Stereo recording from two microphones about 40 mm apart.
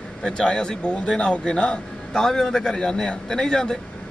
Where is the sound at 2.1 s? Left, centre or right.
Centre.